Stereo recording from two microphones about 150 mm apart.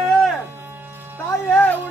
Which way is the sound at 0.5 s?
15° right (ahead or behind).